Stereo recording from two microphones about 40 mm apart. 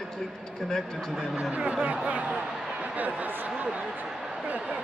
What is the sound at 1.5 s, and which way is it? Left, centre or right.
Speech, right.